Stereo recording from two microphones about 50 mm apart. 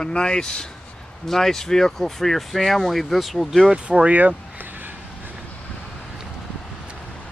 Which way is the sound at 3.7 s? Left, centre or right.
Right.